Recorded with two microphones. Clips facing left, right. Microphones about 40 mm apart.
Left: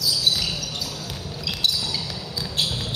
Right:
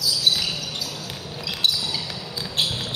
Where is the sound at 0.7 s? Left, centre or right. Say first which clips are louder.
Even; centre.